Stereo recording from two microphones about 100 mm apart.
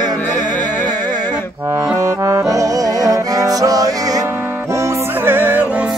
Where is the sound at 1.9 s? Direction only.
30° right (ahead or behind).